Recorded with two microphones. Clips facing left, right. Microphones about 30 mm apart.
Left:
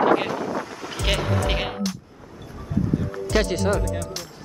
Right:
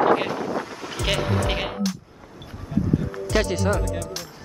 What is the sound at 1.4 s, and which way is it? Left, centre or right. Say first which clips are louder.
Music: even; centre.